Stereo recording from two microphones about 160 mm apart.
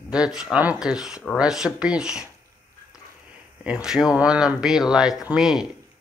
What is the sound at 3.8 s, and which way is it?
Speech, 5° right (ahead or behind).